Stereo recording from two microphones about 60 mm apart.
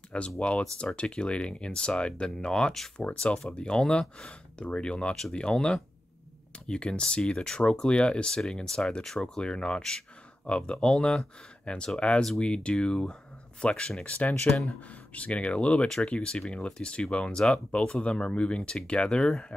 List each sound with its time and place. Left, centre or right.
0.4 s speech: centre
3.0 s speech: centre